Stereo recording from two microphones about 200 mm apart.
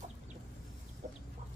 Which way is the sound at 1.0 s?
40° right (ahead or behind).